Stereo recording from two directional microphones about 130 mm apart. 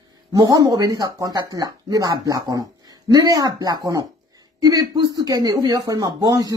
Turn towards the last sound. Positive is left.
turn(degrees=-30)  # may be behind; listen again after turning